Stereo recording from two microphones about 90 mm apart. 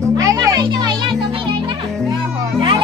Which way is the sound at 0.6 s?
60° right (ahead or behind).